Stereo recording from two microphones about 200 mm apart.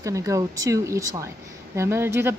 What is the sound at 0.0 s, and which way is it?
A woman's voice, 15° right (ahead or behind).